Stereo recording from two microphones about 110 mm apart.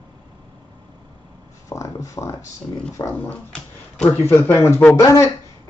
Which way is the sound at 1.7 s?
30° left (ahead or behind).